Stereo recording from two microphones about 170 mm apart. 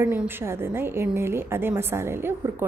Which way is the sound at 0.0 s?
10° right (ahead or behind).